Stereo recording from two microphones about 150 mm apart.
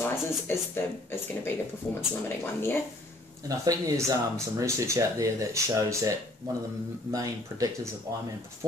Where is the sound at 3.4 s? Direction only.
25° right (ahead or behind).